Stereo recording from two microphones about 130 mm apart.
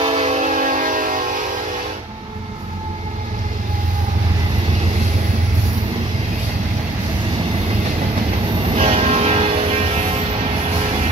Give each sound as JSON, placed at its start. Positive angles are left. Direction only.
{"t": 0.0, "sound": "music", "side_deg": -50}
{"t": 8.7, "sound": "music", "side_deg": -50}